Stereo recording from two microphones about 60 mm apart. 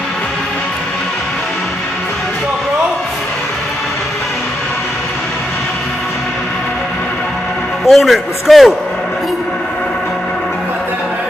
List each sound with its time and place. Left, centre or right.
7.8 s a man's voice: centre